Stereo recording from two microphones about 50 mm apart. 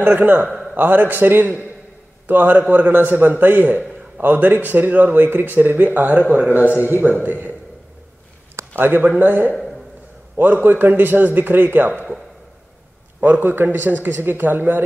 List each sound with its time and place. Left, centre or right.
0.0 s a man's voice: right
8.7 s speech: right
13.2 s speech: right